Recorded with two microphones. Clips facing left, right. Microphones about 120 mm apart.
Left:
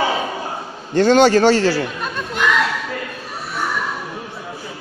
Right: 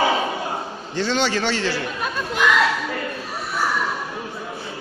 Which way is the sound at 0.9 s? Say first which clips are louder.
Left 10 dB; 50° left (ahead or behind).